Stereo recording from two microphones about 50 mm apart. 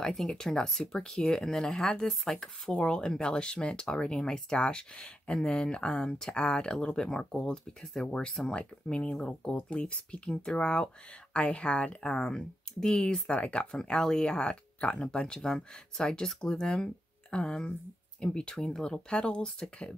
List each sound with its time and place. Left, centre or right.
0.0 s speech: centre
7.8 s speech: centre
8.5 s speech: left